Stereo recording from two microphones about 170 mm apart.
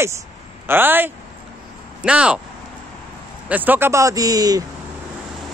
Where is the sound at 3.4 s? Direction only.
10° right (ahead or behind).